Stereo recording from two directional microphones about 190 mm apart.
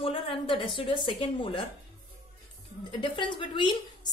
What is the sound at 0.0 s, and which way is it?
A woman's voice, 30° left (ahead or behind).